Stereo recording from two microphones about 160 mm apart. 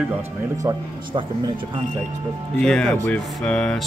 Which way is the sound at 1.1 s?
30° right (ahead or behind).